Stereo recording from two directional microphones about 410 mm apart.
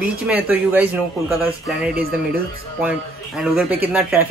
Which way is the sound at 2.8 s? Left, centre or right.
Centre.